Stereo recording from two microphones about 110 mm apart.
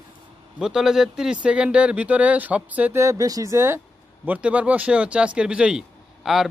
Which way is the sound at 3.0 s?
30° right (ahead or behind).